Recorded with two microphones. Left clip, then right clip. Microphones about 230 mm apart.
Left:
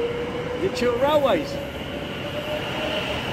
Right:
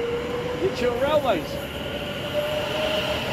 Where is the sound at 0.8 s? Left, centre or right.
Left.